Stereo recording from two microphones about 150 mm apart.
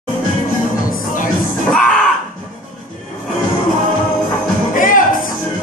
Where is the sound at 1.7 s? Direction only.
5° left (ahead or behind).